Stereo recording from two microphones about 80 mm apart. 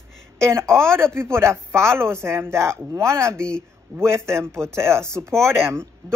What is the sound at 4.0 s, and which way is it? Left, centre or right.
Speech, right.